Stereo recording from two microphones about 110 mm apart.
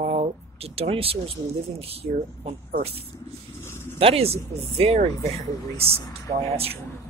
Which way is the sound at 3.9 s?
60° right (ahead or behind).